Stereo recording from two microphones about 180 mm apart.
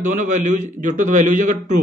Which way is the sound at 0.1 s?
45° right (ahead or behind).